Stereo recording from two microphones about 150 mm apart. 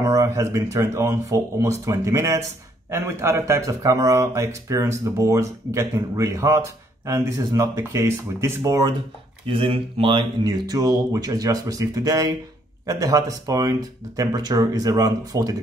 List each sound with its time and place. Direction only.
0.0 s speech: 20° right (ahead or behind)
9.5 s speech: 35° right (ahead or behind)